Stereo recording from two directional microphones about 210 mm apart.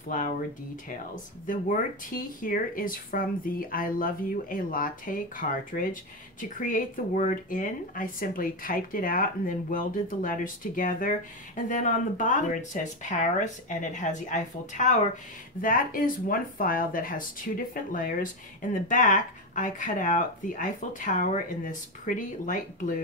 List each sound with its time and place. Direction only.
0.8 s speech: 40° left (ahead or behind)